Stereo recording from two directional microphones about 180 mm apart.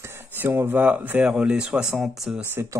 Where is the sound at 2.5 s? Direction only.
15° right (ahead or behind).